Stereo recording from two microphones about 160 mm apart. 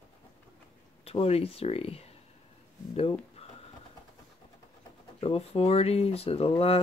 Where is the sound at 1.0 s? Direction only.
40° left (ahead or behind).